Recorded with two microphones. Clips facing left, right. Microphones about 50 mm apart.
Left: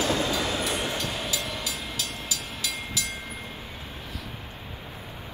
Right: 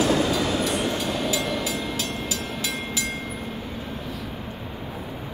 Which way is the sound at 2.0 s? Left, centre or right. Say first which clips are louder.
Right 5 dB; right.